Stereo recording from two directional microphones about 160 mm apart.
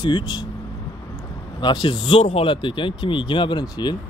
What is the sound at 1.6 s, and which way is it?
Speech, 30° left (ahead or behind).